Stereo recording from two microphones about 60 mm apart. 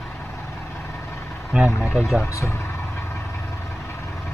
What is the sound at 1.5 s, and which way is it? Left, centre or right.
Speech, centre.